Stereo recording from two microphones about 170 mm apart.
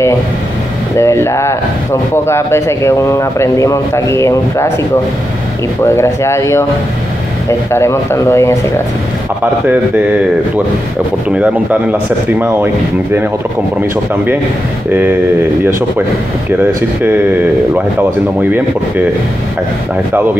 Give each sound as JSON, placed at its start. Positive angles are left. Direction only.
{"t": 0.9, "sound": "speech", "side_deg": 15}
{"t": 5.9, "sound": "speech", "side_deg": 15}
{"t": 11.2, "sound": "speech", "side_deg": -10}
{"t": 17.0, "sound": "speech", "side_deg": -10}